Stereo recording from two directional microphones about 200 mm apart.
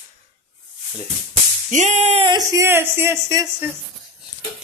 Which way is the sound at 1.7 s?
35° right (ahead or behind).